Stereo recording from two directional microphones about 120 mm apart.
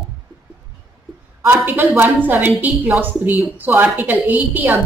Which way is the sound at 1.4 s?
15° right (ahead or behind).